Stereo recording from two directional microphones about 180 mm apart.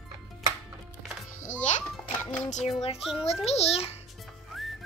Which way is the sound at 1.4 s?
45° left (ahead or behind).